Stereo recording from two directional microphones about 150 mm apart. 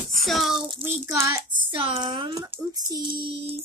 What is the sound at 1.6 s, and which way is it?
A child's voice, 35° right (ahead or behind).